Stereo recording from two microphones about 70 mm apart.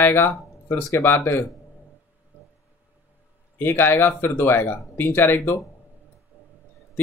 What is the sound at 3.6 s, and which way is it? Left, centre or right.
Speech, left.